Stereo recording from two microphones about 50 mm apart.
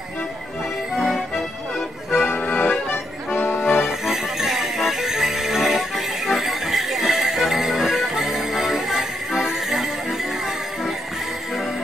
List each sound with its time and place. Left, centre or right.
1.0 s accordion: centre
2.0 s accordion: left
2.4 s accordion: left
2.9 s accordion: left
3.8 s music: centre